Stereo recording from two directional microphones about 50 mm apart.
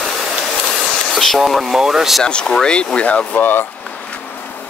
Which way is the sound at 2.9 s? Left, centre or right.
Left.